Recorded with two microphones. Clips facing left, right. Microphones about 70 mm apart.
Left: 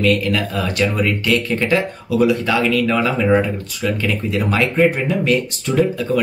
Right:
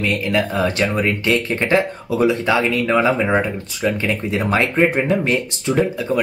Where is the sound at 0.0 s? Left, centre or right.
Right.